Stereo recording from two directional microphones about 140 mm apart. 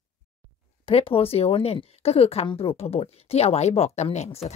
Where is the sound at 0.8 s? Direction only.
40° left (ahead or behind).